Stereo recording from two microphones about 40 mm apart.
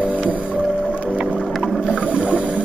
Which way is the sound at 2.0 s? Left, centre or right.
Right.